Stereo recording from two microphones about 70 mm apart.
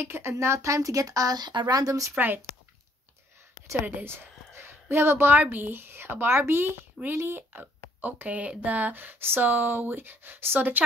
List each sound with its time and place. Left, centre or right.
0.0 s a woman's voice: right
2.1 s speech: right
3.8 s a woman's voice: right